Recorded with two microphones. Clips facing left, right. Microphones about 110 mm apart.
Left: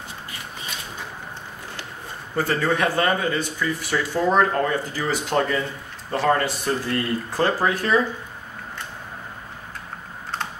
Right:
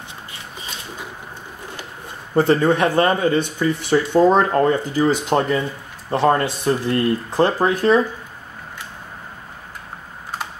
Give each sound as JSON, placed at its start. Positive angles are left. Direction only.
{"t": 2.3, "sound": "speech", "side_deg": -25}